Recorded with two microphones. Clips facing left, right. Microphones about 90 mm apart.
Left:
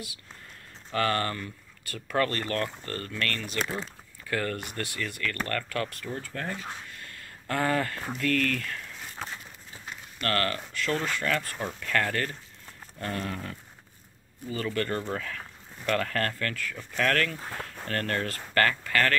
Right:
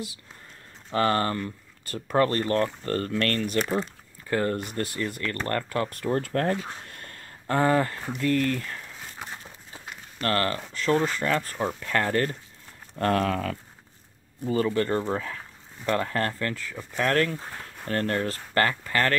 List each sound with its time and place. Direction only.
0.9 s speech: 30° right (ahead or behind); by 3.6 s 45° right (ahead or behind)
4.3 s speech: 25° right (ahead or behind)
5.9 s speech: 50° right (ahead or behind); by 8.8 s 25° right (ahead or behind)
10.1 s speech: 25° right (ahead or behind)
13.0 s speech: 90° right
14.5 s speech: 25° right (ahead or behind)